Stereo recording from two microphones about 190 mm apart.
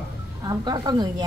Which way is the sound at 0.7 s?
20° right (ahead or behind).